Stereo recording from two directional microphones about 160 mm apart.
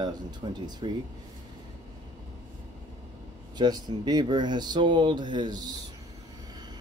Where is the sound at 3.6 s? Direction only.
25° right (ahead or behind).